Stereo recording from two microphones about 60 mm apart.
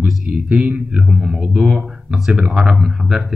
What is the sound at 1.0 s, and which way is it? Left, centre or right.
Speech, centre.